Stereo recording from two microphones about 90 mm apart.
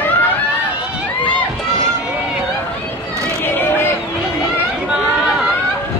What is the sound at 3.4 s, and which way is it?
Run, 25° left (ahead or behind).